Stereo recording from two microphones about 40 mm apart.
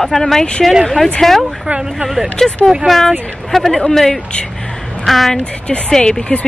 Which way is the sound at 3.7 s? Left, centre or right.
Centre.